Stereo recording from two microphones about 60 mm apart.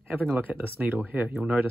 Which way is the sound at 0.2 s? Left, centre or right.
Right.